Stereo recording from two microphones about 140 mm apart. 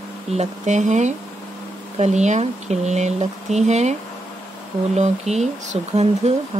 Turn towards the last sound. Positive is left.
turn(degrees=-40)  # may be behind; listen again after turning